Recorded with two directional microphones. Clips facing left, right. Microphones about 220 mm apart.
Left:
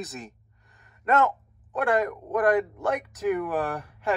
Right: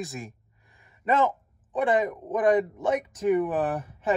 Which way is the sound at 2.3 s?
Centre (ahead or behind).